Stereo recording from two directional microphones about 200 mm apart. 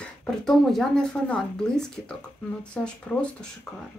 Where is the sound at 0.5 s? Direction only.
5° left (ahead or behind).